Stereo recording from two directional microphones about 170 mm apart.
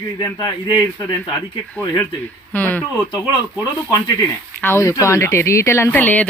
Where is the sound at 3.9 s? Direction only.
15° left (ahead or behind).